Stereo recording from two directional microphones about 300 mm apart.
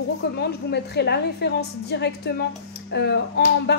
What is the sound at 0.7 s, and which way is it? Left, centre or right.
Speech, left.